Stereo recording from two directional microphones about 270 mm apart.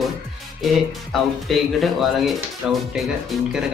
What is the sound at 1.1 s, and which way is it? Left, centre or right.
Speech, centre.